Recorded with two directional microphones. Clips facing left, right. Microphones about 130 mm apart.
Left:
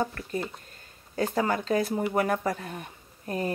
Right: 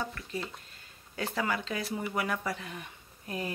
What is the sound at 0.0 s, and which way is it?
Speech, 45° left (ahead or behind).